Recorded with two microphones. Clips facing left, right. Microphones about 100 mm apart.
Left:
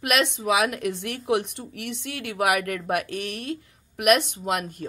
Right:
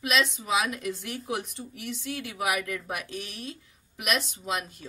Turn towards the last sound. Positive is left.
turn(degrees=55)  # may be behind; listen again after turning